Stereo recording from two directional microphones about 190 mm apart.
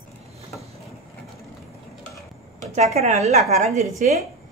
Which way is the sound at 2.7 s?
35° right (ahead or behind).